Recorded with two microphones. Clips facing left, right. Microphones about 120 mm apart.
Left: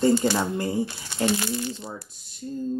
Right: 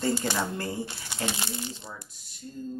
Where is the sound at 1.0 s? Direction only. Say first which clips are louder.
Left 8 dB; 20° right (ahead or behind).